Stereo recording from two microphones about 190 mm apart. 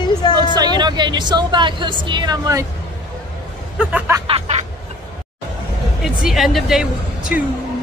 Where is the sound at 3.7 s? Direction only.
5° right (ahead or behind).